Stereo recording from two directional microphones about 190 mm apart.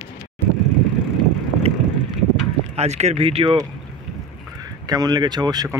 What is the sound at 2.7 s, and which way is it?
Speech, 35° right (ahead or behind).